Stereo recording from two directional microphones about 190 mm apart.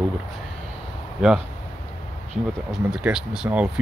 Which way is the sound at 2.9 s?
5° right (ahead or behind).